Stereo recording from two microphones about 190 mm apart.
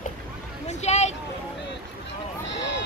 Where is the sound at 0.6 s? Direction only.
35° left (ahead or behind).